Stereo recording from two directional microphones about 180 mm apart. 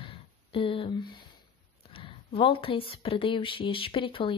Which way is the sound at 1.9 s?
30° left (ahead or behind).